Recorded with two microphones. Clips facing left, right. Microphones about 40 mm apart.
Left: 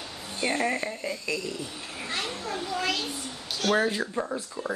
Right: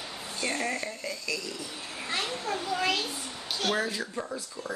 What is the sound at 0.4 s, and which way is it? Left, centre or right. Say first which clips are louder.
Speech: left 4 dB; left.